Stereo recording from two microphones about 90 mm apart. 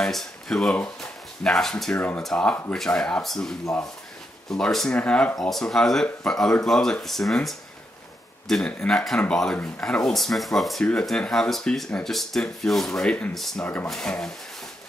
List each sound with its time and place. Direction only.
0.0 s speech: 5° left (ahead or behind)
2.0 s speech: 15° left (ahead or behind)